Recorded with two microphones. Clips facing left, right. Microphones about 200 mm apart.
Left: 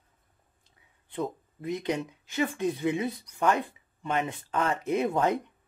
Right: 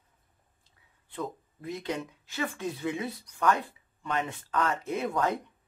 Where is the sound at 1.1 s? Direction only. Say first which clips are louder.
Left 4 dB; 20° left (ahead or behind).